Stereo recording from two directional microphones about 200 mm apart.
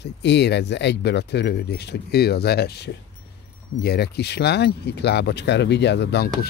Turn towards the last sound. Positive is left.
turn(degrees=55)  # may be behind; listen again after turning